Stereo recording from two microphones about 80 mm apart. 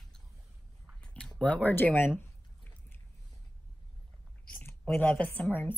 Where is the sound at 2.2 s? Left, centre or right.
Left.